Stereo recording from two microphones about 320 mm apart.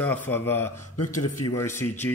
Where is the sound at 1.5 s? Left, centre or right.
Centre.